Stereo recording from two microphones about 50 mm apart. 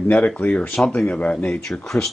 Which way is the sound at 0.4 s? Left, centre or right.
Left.